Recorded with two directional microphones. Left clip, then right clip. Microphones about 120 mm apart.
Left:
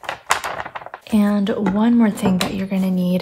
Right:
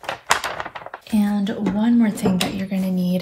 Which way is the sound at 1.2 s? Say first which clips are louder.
Left 4 dB; 65° left (ahead or behind).